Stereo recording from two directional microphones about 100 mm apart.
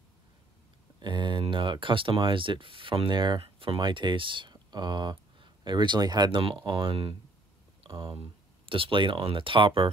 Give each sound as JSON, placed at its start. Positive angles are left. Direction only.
{"t": 0.9, "sound": "a sound", "side_deg": -50}
{"t": 1.5, "sound": "speech", "side_deg": -55}
{"t": 6.6, "sound": "speech", "side_deg": -55}
{"t": 7.9, "sound": "speech", "side_deg": -50}
{"t": 8.6, "sound": "speech", "side_deg": -60}